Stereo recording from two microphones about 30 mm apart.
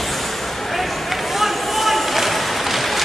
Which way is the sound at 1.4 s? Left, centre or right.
Centre.